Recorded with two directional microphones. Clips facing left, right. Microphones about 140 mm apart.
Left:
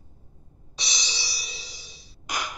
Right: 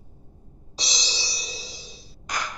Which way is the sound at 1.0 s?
30° right (ahead or behind).